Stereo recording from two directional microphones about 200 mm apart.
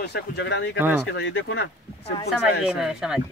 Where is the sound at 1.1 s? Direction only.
65° left (ahead or behind).